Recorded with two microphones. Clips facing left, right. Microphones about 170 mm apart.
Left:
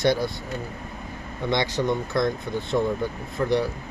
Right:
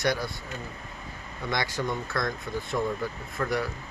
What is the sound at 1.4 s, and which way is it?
Speech, 25° left (ahead or behind).